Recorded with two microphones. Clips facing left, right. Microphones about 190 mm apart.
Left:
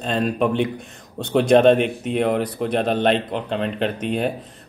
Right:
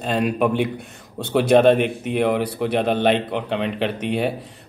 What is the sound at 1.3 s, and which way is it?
Speech, 5° right (ahead or behind).